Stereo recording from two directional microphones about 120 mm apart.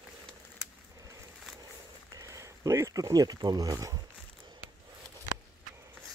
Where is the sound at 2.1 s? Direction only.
30° right (ahead or behind).